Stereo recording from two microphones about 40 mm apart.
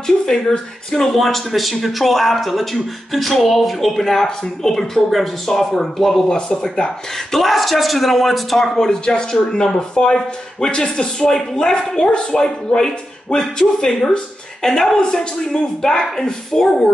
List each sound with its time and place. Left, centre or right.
0.0 s speech: centre
1.1 s a man's voice: centre
6.2 s speech: left
7.3 s a man's voice: centre
8.7 s speech: centre